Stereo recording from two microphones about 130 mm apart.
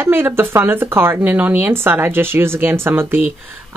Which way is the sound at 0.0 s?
15° right (ahead or behind).